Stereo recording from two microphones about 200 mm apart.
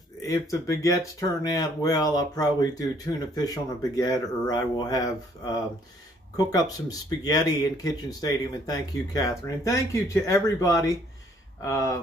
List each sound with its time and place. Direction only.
0.2 s speech: 15° left (ahead or behind)